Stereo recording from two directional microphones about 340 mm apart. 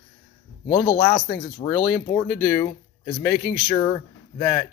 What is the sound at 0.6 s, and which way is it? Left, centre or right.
Speech, centre.